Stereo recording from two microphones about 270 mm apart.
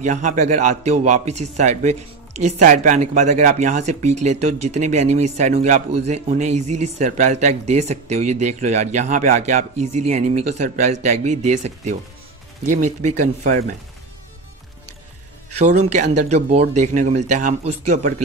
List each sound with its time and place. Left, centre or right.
0.0 s speech: right
11.2 s speech: right
13.4 s speech: right
15.5 s speech: right